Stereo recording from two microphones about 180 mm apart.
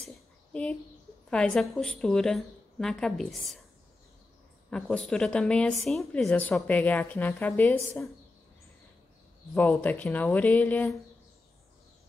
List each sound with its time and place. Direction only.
0.5 s a woman's voice: 5° left (ahead or behind)
4.6 s a woman's voice: 5° left (ahead or behind)
9.5 s a woman's voice: 10° left (ahead or behind)